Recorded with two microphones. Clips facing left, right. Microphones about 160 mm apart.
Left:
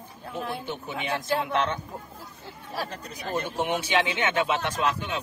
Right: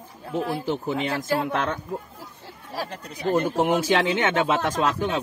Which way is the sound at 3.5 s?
90° right.